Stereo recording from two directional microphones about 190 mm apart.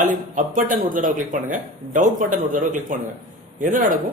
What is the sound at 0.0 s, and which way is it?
Speech, 45° right (ahead or behind).